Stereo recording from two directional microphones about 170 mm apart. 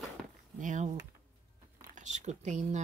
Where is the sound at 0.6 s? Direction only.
50° right (ahead or behind).